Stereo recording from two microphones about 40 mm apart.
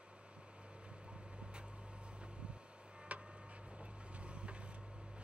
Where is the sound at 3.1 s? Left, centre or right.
Right.